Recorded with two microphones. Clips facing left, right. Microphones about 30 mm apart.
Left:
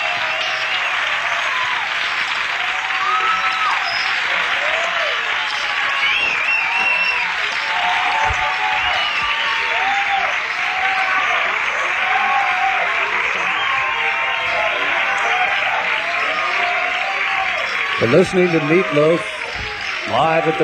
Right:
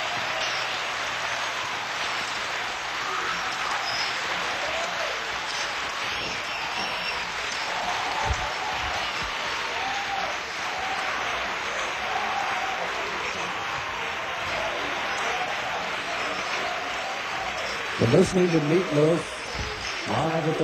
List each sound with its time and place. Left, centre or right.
18.1 s speech: left